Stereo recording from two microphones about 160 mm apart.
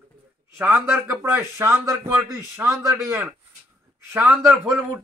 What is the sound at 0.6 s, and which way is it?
A man's voice, 10° right (ahead or behind).